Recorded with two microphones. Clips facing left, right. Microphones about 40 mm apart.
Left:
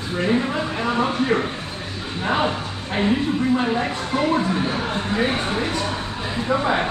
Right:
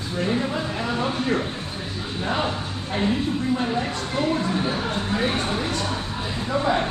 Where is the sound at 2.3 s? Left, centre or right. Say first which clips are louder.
Left 4 dB; left.